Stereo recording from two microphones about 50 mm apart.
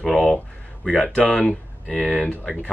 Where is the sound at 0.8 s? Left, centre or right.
Centre.